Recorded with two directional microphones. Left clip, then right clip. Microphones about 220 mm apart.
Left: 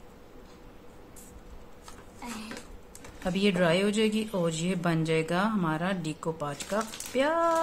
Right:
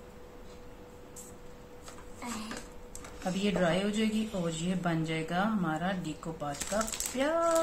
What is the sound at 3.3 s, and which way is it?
A woman's voice, 55° left (ahead or behind).